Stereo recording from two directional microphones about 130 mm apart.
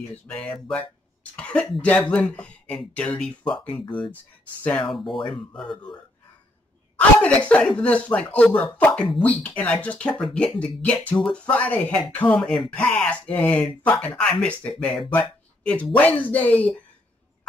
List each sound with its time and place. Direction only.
0.3 s speech: 5° left (ahead or behind)
3.7 s speech: 40° left (ahead or behind)
4.7 s speech: centre (ahead or behind)
7.0 s speech: 10° left (ahead or behind)